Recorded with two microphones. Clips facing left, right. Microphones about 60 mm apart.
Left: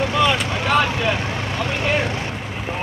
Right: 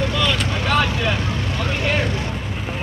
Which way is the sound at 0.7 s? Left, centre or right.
Centre.